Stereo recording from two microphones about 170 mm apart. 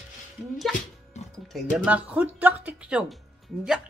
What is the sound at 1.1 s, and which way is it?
Music, 40° left (ahead or behind).